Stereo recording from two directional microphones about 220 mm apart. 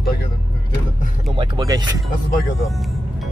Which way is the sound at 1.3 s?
20° right (ahead or behind).